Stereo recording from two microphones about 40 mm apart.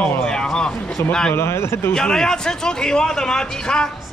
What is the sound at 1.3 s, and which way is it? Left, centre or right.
Speech, left.